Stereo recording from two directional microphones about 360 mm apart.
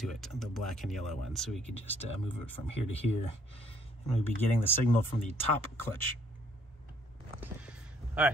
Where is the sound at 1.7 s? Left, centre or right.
Centre.